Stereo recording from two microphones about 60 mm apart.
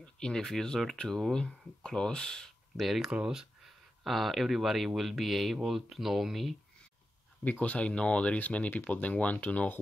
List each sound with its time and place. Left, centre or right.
0.0 s speech: centre
3.1 s speech: centre
3.6 s speech: centre
7.6 s speech: left